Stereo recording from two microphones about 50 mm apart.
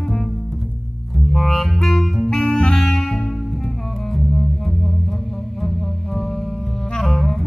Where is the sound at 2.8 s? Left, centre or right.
Centre.